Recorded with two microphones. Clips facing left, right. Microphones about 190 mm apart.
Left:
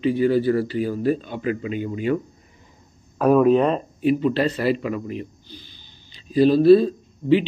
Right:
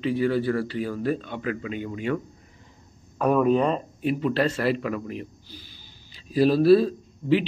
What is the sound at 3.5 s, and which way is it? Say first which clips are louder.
Speech: left 4 dB; 20° left (ahead or behind).